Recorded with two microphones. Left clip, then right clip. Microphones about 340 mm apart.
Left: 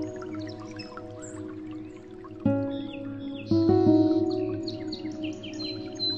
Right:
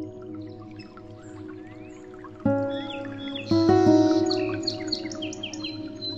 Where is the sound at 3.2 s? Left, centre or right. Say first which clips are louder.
Right 3 dB; right.